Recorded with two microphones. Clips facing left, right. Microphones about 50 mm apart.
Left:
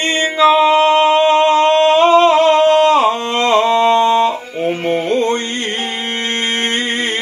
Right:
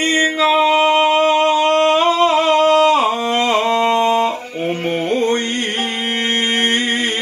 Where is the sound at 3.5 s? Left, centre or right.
Centre.